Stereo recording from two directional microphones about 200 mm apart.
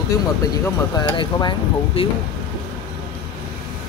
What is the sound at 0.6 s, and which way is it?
Speech, 20° left (ahead or behind).